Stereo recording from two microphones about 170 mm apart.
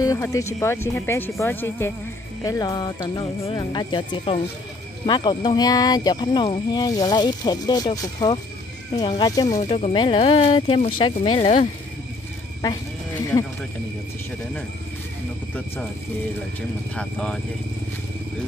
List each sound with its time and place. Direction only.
0.0 s speech: 20° left (ahead or behind)
9.6 s speech: 40° left (ahead or behind)
16.9 s speech: 5° left (ahead or behind)